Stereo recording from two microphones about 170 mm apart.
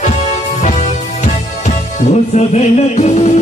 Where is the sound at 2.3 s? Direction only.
40° left (ahead or behind).